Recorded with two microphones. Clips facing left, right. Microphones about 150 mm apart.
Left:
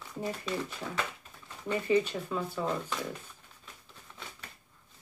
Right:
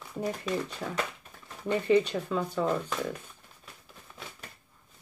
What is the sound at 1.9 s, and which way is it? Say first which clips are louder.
Speech: right 3 dB; 10° left (ahead or behind).